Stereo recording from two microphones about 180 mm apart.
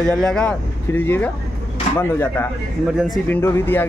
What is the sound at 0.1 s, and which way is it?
Speech, 5° left (ahead or behind).